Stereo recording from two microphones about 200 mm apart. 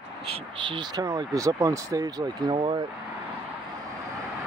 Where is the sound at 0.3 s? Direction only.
25° right (ahead or behind).